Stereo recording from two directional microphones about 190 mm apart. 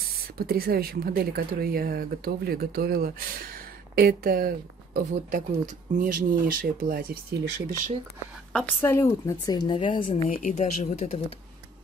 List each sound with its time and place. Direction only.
0.4 s speech: 55° right (ahead or behind)
8.5 s speech: 15° left (ahead or behind)
10.2 s speech: 45° left (ahead or behind)